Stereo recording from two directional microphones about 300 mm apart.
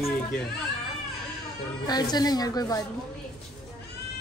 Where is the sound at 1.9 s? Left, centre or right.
Centre.